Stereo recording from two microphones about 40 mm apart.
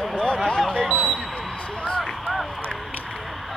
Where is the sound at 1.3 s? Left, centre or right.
Left.